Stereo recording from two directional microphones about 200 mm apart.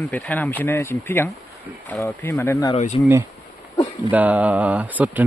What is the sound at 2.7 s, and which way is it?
Speech, 35° left (ahead or behind).